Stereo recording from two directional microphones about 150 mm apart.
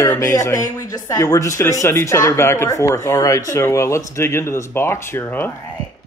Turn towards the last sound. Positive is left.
turn(degrees=15)  # may be behind; listen again after turning